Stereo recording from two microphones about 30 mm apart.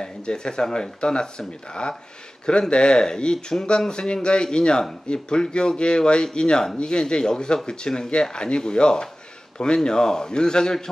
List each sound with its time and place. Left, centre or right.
0.0 s speech: left